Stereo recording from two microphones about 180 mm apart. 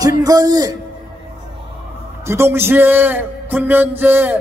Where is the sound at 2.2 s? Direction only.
15° right (ahead or behind).